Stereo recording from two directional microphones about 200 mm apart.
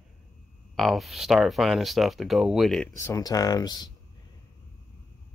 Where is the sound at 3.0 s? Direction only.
15° left (ahead or behind).